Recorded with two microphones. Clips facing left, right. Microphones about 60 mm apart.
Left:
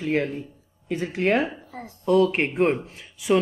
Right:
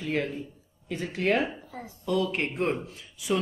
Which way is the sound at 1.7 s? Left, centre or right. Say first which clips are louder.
Left 8 dB; left.